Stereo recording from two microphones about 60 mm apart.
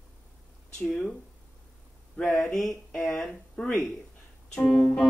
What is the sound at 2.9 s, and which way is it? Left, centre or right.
Music, centre.